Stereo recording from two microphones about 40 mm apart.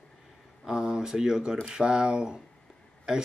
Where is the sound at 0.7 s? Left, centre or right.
Centre.